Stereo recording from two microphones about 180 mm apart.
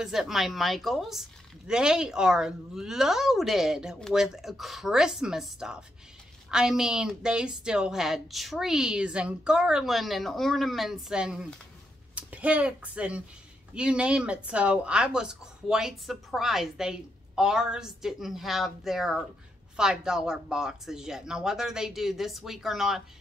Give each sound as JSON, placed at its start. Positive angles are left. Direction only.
{"t": 0.0, "sound": "a child's voice", "side_deg": -5}